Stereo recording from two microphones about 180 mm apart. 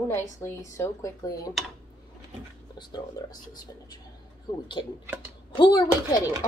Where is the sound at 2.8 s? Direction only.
20° left (ahead or behind).